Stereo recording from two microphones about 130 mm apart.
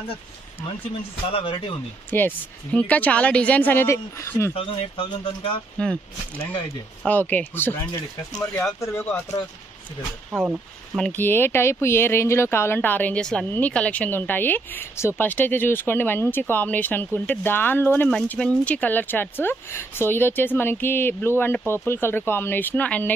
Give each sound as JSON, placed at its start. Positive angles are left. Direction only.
{"t": 2.0, "sound": "speech", "side_deg": 15}
{"t": 4.6, "sound": "speech", "side_deg": 40}
{"t": 5.8, "sound": "speech", "side_deg": 5}
{"t": 7.1, "sound": "speech", "side_deg": 10}
{"t": 8.8, "sound": "speech", "side_deg": 20}
{"t": 10.3, "sound": "speech", "side_deg": -15}
{"t": 11.0, "sound": "speech", "side_deg": 15}